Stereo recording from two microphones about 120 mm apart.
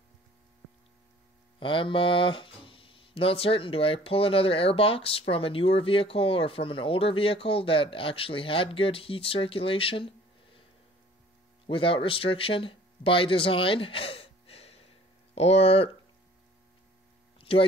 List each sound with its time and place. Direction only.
1.6 s speech: 45° left (ahead or behind)
11.6 s speech: 45° left (ahead or behind)
17.4 s a sound: 50° left (ahead or behind)